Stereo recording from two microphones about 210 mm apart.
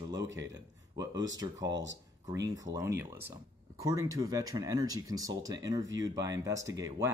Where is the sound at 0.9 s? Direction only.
20° right (ahead or behind).